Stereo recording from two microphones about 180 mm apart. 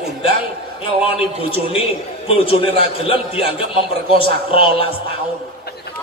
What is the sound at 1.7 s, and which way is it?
A man's voice, 30° left (ahead or behind).